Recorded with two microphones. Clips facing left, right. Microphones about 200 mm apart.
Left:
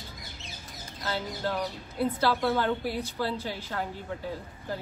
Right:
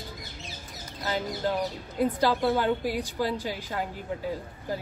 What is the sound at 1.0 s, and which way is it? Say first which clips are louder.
Speech: right 3 dB; 15° right (ahead or behind).